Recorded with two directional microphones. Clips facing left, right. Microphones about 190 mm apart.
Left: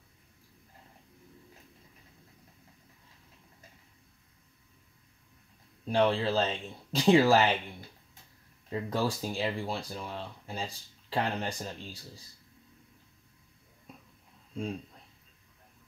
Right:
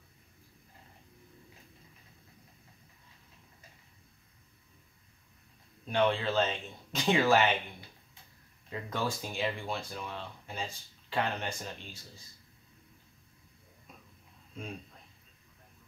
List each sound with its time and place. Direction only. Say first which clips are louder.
5.9 s speech: left 2 dB; 35° left (ahead or behind)
8.6 s speech: left 4 dB; 35° left (ahead or behind)